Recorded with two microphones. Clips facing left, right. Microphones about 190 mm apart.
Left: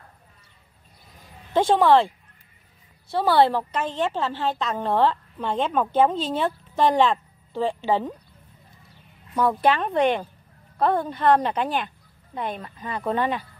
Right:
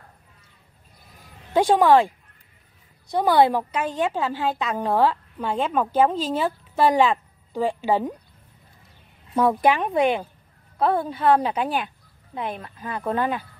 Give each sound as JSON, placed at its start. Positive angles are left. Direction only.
{"t": 1.5, "sound": "a woman's voice", "side_deg": -10}
{"t": 9.3, "sound": "speech", "side_deg": -25}
{"t": 9.6, "sound": "a woman's voice", "side_deg": -10}